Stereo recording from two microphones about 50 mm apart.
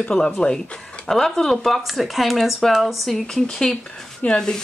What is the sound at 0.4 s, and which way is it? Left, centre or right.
Speech, centre.